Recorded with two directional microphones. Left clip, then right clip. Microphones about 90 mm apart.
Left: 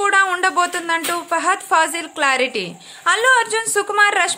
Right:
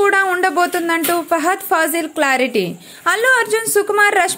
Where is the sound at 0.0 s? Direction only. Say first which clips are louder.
Right 1 dB; 35° right (ahead or behind).